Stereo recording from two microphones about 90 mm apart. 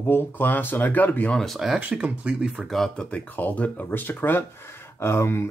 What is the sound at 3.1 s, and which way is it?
Speech, 20° left (ahead or behind).